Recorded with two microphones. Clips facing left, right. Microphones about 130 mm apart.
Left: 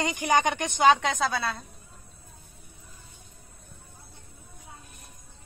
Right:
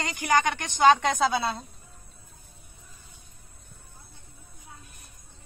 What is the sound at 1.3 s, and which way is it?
Speech, 25° right (ahead or behind).